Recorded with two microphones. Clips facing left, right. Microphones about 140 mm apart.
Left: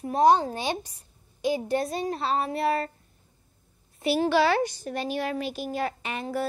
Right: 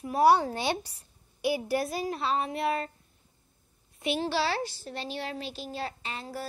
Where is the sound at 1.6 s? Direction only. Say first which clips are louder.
Left 2 dB; 25° left (ahead or behind).